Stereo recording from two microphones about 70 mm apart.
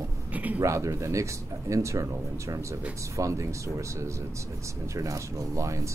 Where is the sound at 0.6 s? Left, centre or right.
Right.